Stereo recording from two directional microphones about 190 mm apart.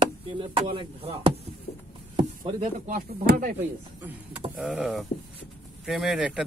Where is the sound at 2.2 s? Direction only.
25° right (ahead or behind).